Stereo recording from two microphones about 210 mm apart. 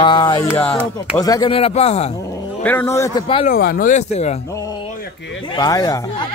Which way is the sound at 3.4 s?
45° left (ahead or behind).